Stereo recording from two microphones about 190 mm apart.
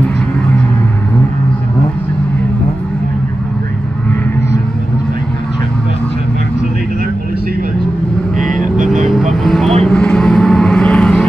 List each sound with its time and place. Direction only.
8.5 s vehicle: 40° right (ahead or behind)
9.3 s vehicle: centre (ahead or behind)